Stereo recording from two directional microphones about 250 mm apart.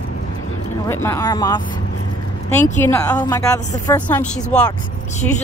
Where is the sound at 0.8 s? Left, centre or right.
Centre.